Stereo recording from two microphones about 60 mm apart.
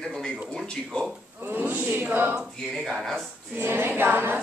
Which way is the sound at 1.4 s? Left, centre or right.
Right.